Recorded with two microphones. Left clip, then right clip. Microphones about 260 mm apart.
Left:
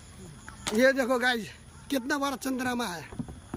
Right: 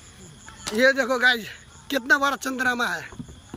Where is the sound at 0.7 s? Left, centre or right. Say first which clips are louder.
Right 4 dB; centre.